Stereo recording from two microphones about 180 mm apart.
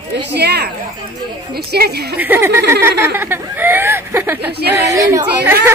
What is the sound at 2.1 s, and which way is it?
Speech, 10° right (ahead or behind).